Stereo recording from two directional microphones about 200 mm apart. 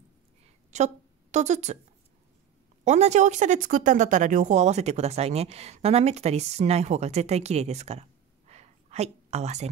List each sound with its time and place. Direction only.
0.7 s a woman's voice: 35° right (ahead or behind)
2.8 s speech: 35° right (ahead or behind)
8.5 s a sound: 30° right (ahead or behind)